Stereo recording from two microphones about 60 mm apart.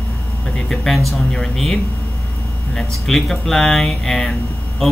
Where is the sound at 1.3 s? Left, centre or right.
Centre.